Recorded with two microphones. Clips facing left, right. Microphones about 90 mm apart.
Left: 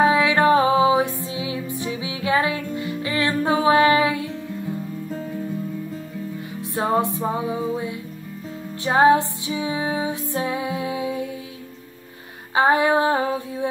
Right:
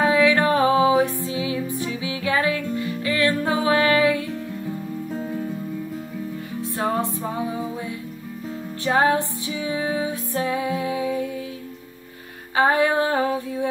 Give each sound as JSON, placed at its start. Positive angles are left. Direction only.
{"t": 0.0, "sound": "music", "side_deg": 20}
{"t": 6.7, "sound": "music", "side_deg": 20}
{"t": 8.8, "sound": "music", "side_deg": 20}
{"t": 12.5, "sound": "female singing", "side_deg": 20}